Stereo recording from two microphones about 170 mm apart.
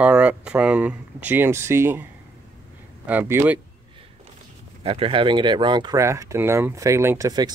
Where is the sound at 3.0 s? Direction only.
10° right (ahead or behind).